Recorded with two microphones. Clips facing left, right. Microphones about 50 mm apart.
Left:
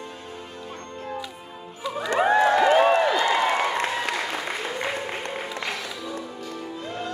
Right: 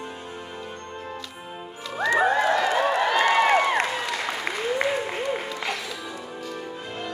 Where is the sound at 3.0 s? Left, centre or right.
Right.